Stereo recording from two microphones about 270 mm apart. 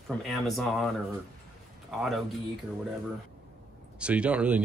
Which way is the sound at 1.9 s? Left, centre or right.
Centre.